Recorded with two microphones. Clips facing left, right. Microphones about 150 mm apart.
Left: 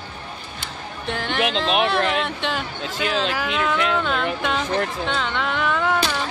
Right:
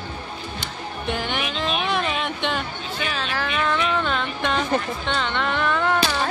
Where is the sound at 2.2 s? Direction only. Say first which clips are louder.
Left 1 dB; centre (ahead or behind).